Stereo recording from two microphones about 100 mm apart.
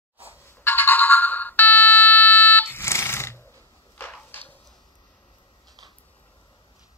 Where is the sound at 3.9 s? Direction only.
20° left (ahead or behind).